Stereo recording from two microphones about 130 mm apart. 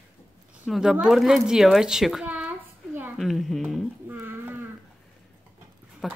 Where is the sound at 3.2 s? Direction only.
Centre (ahead or behind).